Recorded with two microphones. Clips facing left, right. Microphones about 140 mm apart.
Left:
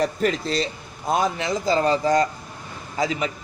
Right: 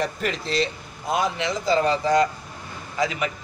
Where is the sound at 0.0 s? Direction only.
40° left (ahead or behind).